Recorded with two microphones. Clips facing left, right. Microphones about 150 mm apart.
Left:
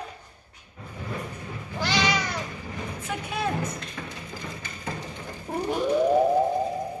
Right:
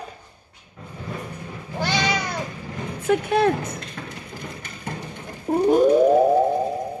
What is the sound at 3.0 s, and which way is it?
Speech, 70° right (ahead or behind).